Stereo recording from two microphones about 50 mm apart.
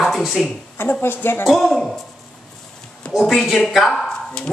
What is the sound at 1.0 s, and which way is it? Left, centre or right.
Speech, left.